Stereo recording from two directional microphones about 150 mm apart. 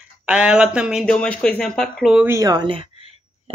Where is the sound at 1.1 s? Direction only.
10° left (ahead or behind).